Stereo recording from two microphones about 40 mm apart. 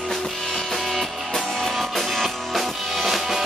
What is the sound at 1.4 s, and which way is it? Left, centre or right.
Music, centre.